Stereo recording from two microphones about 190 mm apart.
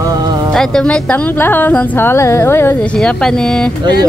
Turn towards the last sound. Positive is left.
turn(degrees=5)  # may be behind; listen again after turning